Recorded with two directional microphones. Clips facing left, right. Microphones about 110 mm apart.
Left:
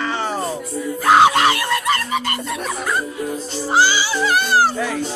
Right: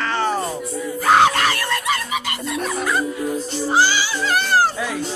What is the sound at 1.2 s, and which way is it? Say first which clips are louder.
Screaming: left 3 dB; 20° left (ahead or behind).